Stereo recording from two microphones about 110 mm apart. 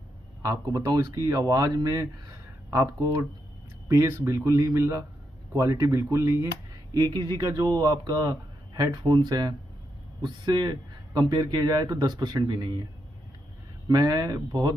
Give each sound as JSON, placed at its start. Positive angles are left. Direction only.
{"t": 0.4, "sound": "speech", "side_deg": -30}
{"t": 13.8, "sound": "speech", "side_deg": -35}